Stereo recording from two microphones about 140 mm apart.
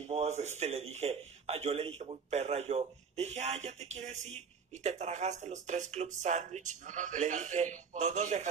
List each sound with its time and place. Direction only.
0.0 s speech: 55° right (ahead or behind)